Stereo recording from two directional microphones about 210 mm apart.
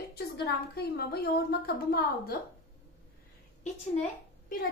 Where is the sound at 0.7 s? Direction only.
50° left (ahead or behind).